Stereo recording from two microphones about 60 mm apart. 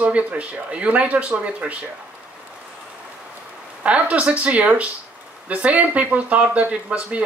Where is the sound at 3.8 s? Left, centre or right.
Right.